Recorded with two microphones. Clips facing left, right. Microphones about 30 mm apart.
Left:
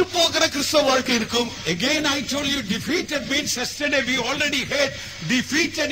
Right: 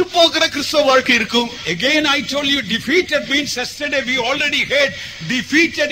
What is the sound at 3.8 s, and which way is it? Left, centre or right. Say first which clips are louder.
Speech: right 2 dB; centre.